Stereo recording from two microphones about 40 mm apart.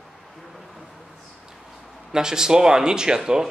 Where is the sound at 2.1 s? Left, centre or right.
Centre.